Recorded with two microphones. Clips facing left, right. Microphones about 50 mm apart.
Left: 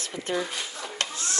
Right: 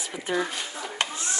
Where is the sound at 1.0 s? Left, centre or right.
Right.